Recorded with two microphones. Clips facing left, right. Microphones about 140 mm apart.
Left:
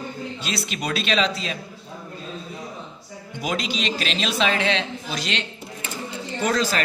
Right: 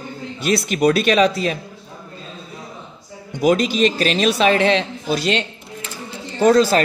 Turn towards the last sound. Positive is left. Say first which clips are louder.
# right 9 dB
turn(degrees=-35)  # may be behind; listen again after turning